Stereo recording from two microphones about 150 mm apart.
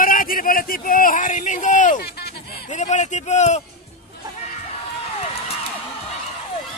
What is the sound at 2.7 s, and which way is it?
Speech, 55° left (ahead or behind).